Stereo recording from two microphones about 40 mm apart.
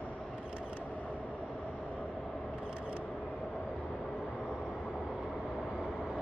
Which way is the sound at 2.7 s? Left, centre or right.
Right.